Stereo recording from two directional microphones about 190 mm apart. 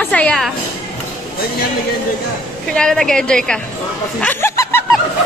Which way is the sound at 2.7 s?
5° left (ahead or behind).